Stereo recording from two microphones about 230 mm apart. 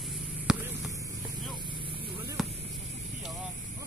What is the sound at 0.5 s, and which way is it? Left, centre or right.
Basketball bounce, centre.